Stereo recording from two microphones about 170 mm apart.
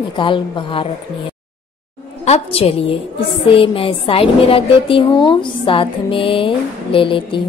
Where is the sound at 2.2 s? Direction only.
35° left (ahead or behind).